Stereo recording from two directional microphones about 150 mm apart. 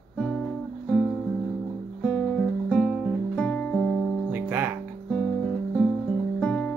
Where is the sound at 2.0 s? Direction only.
5° left (ahead or behind).